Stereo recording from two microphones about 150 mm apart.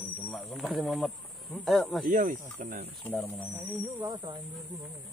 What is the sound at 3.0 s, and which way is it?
Speech, 10° left (ahead or behind).